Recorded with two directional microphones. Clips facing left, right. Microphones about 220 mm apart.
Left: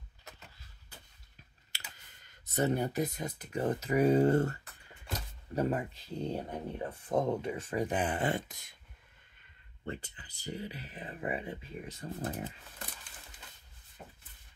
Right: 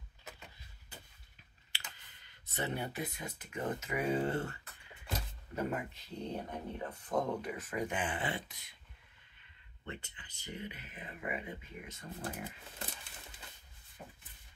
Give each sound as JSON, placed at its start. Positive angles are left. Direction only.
{"t": 1.7, "sound": "clicking", "side_deg": 45}
{"t": 2.2, "sound": "speech", "side_deg": 40}
{"t": 9.8, "sound": "speech", "side_deg": 35}